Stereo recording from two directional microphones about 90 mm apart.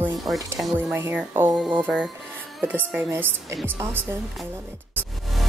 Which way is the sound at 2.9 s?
20° right (ahead or behind).